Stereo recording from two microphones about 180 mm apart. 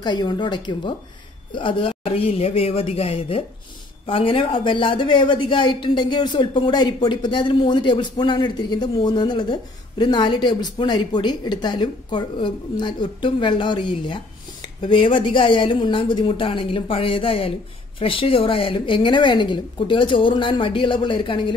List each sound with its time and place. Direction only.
0.0 s speech: 25° left (ahead or behind)